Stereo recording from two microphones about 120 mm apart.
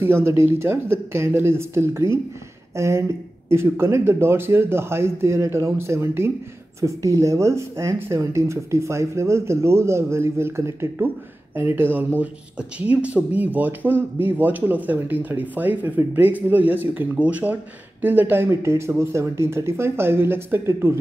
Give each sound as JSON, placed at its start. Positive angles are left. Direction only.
{"t": 0.0, "sound": "speech", "side_deg": -20}